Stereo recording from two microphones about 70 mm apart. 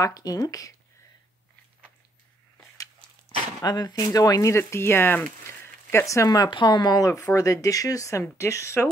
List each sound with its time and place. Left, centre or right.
0.0 s speech: left
3.3 s speech: left
4.6 s speech: left
6.0 s speech: left
7.3 s speech: left